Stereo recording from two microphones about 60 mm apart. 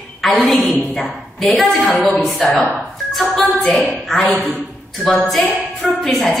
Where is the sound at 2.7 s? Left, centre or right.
Centre.